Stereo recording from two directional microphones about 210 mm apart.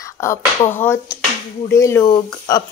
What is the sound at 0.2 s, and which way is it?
Speech, 15° left (ahead or behind).